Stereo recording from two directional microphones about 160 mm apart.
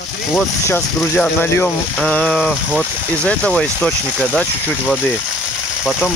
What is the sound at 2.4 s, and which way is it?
Speech, 5° right (ahead or behind).